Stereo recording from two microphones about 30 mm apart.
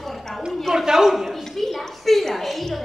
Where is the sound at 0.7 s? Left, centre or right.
Centre.